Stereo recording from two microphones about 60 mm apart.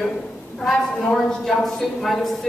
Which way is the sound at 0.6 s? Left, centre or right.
Centre.